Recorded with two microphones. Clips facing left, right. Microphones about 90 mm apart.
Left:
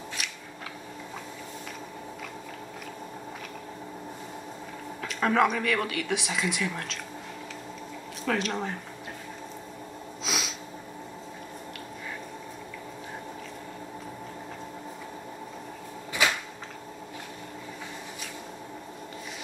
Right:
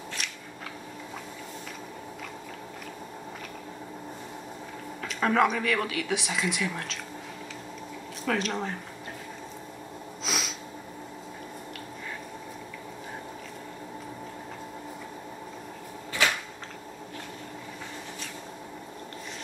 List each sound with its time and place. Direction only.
5.0 s speech: centre (ahead or behind)
8.3 s speech: centre (ahead or behind)
10.2 s snort: centre (ahead or behind)
16.2 s cupboard open or close: 15° left (ahead or behind)